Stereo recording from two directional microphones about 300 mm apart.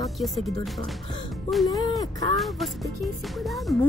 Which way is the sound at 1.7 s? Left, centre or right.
Centre.